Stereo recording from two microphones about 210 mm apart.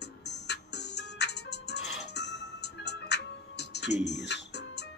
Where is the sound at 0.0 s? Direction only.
55° left (ahead or behind).